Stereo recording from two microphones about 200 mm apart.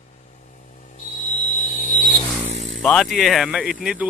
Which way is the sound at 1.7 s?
40° left (ahead or behind).